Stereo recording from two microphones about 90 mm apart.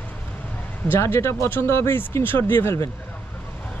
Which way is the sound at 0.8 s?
25° left (ahead or behind).